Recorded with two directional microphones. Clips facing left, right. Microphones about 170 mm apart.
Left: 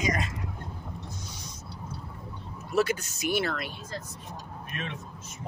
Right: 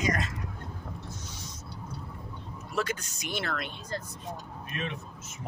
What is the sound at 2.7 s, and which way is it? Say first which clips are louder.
Speech: left 6 dB; 10° left (ahead or behind).